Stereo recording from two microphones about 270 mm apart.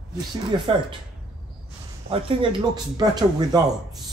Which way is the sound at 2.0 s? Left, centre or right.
Centre.